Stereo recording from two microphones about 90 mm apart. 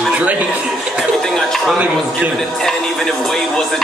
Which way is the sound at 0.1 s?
15° right (ahead or behind).